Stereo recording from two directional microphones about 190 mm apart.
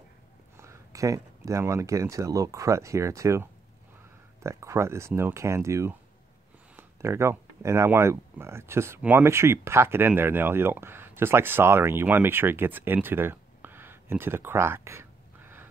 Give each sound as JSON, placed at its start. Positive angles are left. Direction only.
{"t": 0.6, "sound": "speech", "side_deg": -15}